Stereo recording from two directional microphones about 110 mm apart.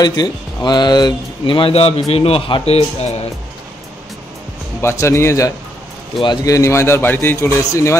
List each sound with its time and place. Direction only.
0.0 s speech: 40° left (ahead or behind); by 3.2 s 70° left (ahead or behind)
4.8 s a man's voice: 25° left (ahead or behind)
6.2 s a man's voice: 35° left (ahead or behind)